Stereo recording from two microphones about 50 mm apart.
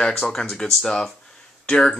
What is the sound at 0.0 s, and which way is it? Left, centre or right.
Speech, centre.